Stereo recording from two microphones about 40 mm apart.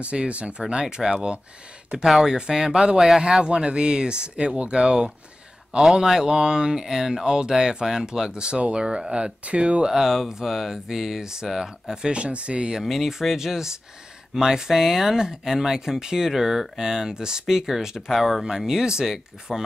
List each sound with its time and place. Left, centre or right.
0.0 s speech: right
2.0 s speech: centre
2.3 s speech: centre
5.8 s speech: centre; by 9.8 s right
9.8 s speech: centre
12.8 s speech: centre
19.5 s speech: centre